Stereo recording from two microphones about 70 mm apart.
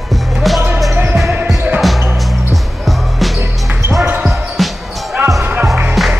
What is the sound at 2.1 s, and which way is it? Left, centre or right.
Music, centre.